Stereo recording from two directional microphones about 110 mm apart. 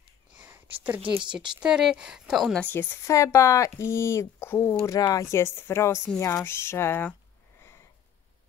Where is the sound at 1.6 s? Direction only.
5° right (ahead or behind).